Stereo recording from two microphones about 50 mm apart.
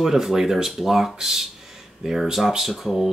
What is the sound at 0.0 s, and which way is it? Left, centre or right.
Speech, centre.